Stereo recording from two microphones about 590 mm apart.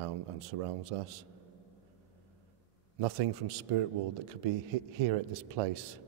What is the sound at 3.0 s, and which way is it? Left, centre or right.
Speech, right.